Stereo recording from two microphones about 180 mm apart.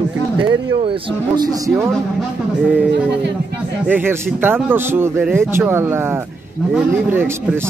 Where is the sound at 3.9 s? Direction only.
10° right (ahead or behind).